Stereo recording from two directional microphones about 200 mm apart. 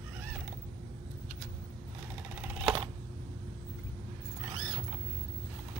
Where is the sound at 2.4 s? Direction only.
10° right (ahead or behind).